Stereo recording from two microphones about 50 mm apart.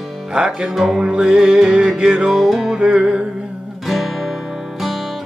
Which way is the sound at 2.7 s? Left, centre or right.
Centre.